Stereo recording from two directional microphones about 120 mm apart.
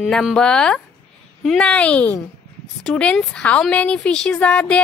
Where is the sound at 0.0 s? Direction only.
Centre (ahead or behind).